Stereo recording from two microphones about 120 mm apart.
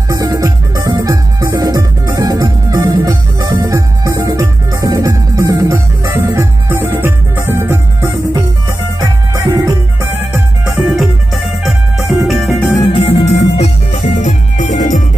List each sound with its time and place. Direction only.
0.1 s music: 30° right (ahead or behind)
10.6 s music: 5° right (ahead or behind)
12.8 s music: 55° left (ahead or behind); by 15.0 s 85° left